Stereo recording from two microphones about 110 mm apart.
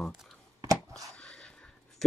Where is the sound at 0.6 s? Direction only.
30° right (ahead or behind).